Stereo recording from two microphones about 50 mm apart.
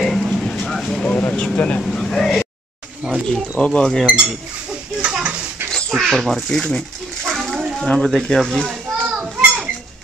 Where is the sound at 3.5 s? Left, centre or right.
Left.